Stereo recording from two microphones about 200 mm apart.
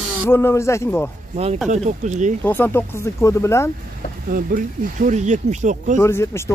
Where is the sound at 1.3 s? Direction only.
30° right (ahead or behind).